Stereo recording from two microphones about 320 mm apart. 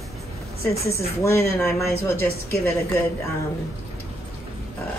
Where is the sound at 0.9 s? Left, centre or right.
Centre.